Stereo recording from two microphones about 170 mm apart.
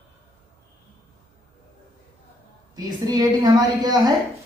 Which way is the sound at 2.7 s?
20° right (ahead or behind).